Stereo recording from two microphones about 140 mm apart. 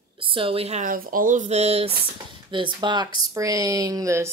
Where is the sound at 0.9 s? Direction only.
90° right; by 1.9 s 50° right (ahead or behind).